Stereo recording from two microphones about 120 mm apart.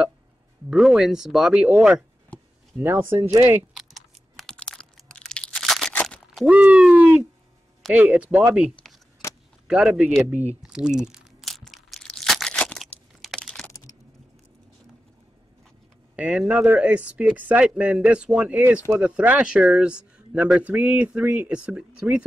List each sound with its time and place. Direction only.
0.7 s speech: 5° right (ahead or behind)
2.8 s speech: 20° right (ahead or behind)
3.7 s crunch: centre (ahead or behind)
6.0 s a sound: 5° left (ahead or behind)
6.4 s hoot: 10° right (ahead or behind)
7.9 s speech: 10° right (ahead or behind)
9.2 s keys jangling: 20° left (ahead or behind)
9.7 s speech: 10° right (ahead or behind)
10.6 s crumpling: 5° right (ahead or behind)
13.4 s computer keyboard: 5° left (ahead or behind)
16.2 s speech: 10° right (ahead or behind)